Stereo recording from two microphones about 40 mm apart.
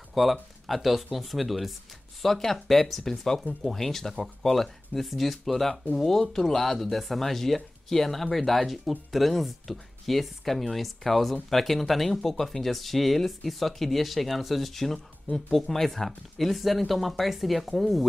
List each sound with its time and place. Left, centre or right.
0.1 s speech: centre